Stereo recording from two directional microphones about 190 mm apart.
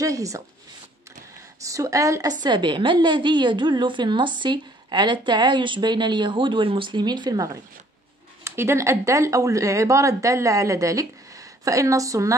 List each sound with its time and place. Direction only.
0.0 s speech: 15° right (ahead or behind)
1.6 s a woman's voice: 15° right (ahead or behind)
8.5 s speech: 15° right (ahead or behind)